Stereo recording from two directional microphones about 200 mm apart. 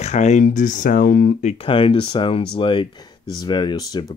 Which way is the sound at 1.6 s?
25° left (ahead or behind).